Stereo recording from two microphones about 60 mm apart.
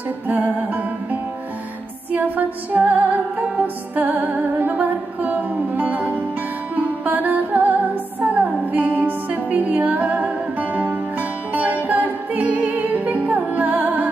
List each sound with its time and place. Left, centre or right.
0.3 s music: right